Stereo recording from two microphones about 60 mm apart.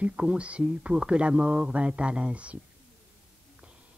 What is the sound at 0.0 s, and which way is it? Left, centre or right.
A man's voice, centre.